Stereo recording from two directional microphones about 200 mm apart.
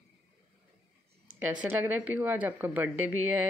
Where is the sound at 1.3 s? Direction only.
10° right (ahead or behind).